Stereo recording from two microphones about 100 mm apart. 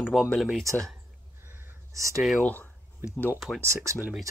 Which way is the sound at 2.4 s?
15° left (ahead or behind).